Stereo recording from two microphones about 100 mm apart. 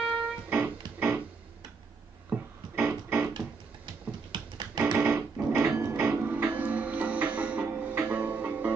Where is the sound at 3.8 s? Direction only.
45° right (ahead or behind).